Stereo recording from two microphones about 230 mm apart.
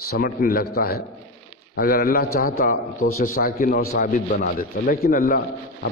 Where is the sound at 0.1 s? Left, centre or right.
Left.